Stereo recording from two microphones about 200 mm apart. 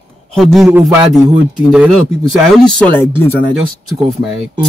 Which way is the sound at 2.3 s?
5° left (ahead or behind).